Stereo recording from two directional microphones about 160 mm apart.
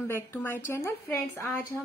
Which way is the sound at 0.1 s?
15° left (ahead or behind).